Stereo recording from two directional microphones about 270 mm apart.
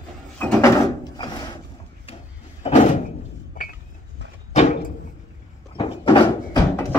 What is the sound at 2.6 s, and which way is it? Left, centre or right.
Door, left.